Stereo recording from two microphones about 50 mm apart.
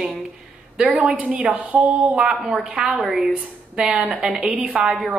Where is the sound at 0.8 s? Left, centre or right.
Centre.